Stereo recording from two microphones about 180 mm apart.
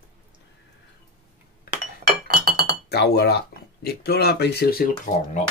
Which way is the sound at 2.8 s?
65° left (ahead or behind).